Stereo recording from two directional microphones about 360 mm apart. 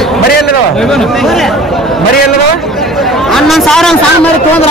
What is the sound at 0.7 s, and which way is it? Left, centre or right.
Chatter, centre.